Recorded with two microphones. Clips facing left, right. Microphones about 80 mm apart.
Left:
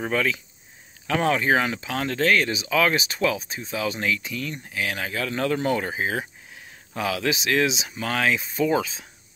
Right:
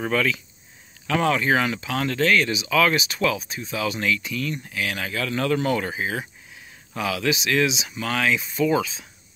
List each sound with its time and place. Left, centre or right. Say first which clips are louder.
0.0 s speech: right 1 dB; left